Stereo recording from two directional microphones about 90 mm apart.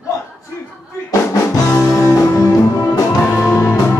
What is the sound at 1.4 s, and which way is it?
Music, 25° left (ahead or behind).